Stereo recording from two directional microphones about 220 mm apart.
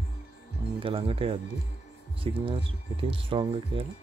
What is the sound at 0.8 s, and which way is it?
Speech, 25° right (ahead or behind).